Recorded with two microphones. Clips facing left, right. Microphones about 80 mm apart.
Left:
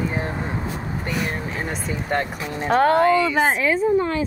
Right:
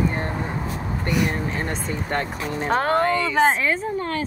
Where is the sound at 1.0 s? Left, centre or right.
Centre.